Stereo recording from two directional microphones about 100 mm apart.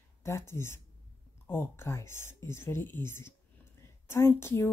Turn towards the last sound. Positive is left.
turn(degrees=25)  # may be behind; listen again after turning